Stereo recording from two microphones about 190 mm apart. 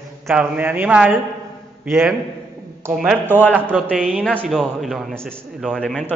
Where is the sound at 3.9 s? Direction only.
5° right (ahead or behind).